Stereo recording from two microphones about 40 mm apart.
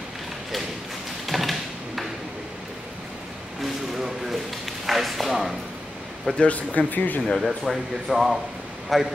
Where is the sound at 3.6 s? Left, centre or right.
Centre.